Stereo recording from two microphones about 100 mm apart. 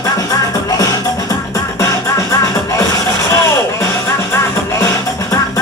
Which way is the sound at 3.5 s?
30° left (ahead or behind).